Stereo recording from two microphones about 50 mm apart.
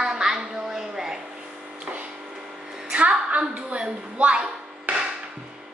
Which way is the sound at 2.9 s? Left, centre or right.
Right.